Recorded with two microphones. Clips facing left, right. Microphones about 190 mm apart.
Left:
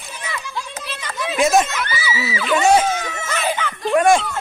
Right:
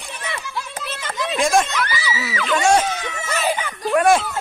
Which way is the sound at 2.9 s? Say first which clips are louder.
Left 3 dB; 45° left (ahead or behind).